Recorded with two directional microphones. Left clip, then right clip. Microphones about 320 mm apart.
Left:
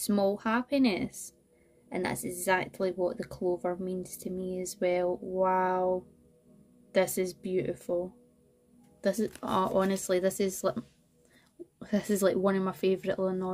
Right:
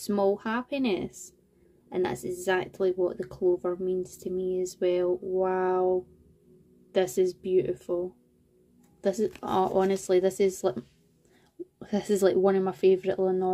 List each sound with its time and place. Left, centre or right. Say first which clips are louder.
0.0 s speech: right 2 dB; centre
9.0 s speech: right 3 dB; centre
11.8 s speech: right 3 dB; centre